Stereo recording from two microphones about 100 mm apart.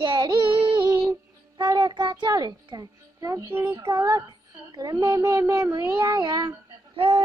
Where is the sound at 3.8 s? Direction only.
45° right (ahead or behind).